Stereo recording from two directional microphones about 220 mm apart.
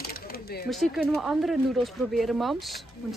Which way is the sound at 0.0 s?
45° left (ahead or behind).